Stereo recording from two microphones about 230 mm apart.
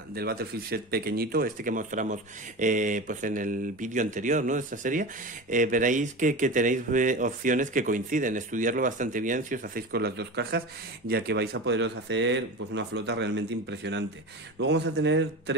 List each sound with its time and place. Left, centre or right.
0.1 s speech: right